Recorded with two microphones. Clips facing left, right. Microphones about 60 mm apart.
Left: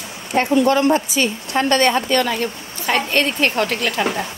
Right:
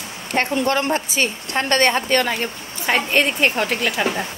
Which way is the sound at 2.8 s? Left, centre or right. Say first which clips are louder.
Even; centre.